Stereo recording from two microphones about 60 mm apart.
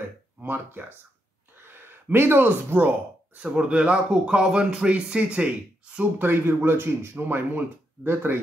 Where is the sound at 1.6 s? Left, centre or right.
Right.